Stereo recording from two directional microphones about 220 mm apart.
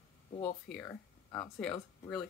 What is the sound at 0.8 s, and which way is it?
Speech, 10° left (ahead or behind).